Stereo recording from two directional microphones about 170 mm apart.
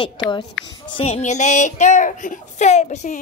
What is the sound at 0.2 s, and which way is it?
A child's voice, 25° left (ahead or behind).